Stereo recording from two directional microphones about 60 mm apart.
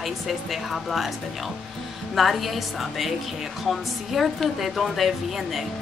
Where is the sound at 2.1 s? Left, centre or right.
Centre.